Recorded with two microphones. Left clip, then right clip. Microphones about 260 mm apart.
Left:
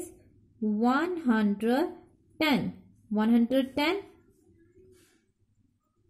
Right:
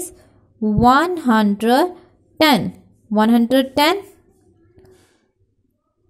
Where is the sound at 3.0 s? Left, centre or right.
Centre.